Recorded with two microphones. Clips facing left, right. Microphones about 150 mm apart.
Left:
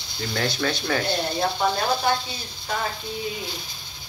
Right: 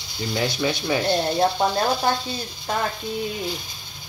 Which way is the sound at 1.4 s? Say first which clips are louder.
Right 3 dB; 40° right (ahead or behind).